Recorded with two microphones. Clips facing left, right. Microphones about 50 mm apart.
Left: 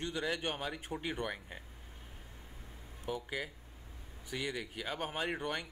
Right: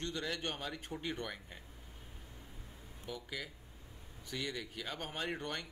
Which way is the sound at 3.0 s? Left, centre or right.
Left.